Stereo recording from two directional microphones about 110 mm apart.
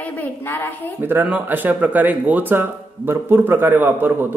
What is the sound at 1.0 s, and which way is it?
Speech, 15° right (ahead or behind).